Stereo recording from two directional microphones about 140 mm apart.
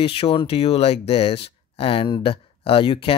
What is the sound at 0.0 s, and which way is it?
Speech, 40° left (ahead or behind).